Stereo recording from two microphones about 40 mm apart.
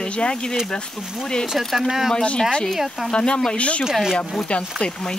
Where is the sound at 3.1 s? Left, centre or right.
Left.